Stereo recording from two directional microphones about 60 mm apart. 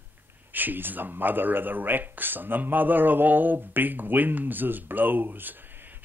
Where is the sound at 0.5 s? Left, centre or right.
Right.